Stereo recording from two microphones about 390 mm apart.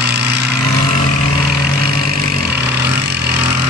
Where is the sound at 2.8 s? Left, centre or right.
Right.